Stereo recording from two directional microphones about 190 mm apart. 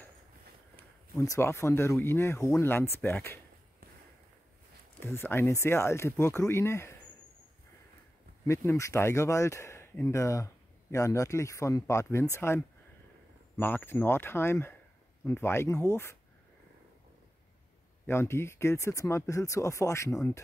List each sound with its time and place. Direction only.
1.1 s speech: 15° left (ahead or behind)
5.0 s speech: 10° left (ahead or behind)
8.5 s speech: 15° left (ahead or behind)
18.0 s speech: 15° left (ahead or behind)